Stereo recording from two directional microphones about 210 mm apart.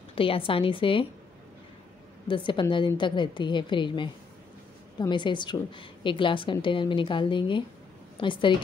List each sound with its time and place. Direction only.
0.1 s a woman's voice: 25° left (ahead or behind)
2.2 s a woman's voice: 25° left (ahead or behind)